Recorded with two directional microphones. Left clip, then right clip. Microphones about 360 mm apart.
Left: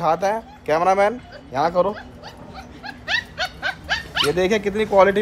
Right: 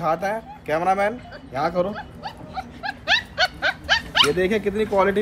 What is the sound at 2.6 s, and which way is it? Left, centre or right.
Wild animals, centre.